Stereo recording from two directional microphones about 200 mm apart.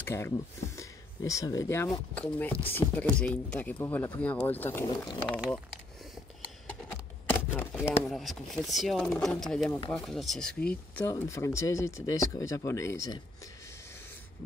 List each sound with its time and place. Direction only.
0.0 s speech: 15° left (ahead or behind)
6.4 s a sound: 10° left (ahead or behind)
8.1 s speech: centre (ahead or behind)
9.7 s speech: 20° left (ahead or behind)
9.9 s speech: centre (ahead or behind)